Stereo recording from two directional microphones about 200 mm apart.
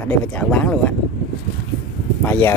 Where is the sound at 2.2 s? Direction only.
10° left (ahead or behind).